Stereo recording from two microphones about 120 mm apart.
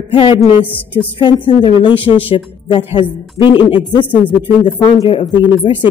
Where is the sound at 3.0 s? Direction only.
45° left (ahead or behind).